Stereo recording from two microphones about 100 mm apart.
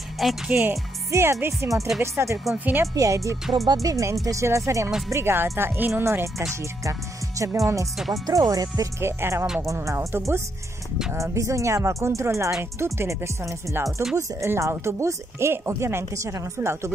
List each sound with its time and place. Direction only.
0.5 s speech: 15° right (ahead or behind)
1.1 s speech: 25° right (ahead or behind)
2.8 s speech: 35° right (ahead or behind)
9.0 s speech: 25° right (ahead or behind)